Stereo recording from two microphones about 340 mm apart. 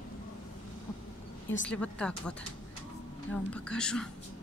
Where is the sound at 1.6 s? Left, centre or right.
Centre.